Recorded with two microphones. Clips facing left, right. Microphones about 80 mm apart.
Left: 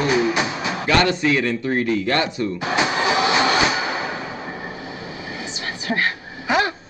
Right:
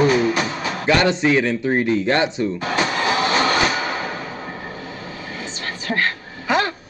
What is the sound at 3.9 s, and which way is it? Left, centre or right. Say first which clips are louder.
Train: even; left.